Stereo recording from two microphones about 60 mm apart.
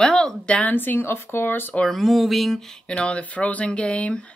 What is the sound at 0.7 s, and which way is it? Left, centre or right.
Speech, left.